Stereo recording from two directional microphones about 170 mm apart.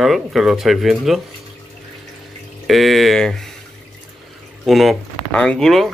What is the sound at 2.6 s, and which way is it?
Speech, centre (ahead or behind).